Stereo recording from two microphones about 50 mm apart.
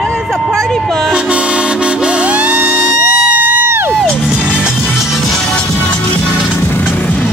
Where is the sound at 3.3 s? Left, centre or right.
Right.